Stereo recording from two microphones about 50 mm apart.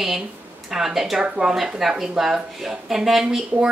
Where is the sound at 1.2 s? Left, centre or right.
Right.